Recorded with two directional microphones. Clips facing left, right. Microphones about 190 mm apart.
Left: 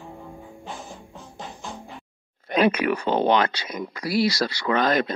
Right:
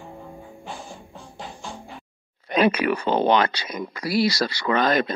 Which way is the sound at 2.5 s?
50° left (ahead or behind).